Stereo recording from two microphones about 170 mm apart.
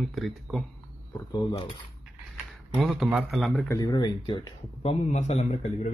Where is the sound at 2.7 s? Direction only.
Centre (ahead or behind).